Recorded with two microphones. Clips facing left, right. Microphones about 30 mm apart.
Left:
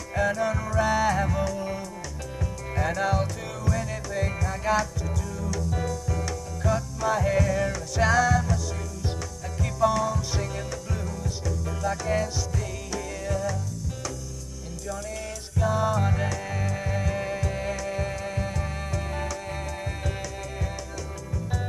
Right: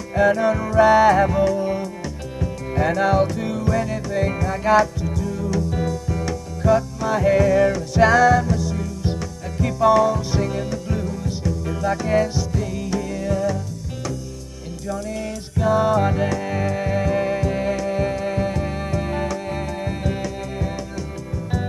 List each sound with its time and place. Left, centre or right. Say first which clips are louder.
0.2 s music: right 8 dB; right
15.5 s music: right 7 dB; right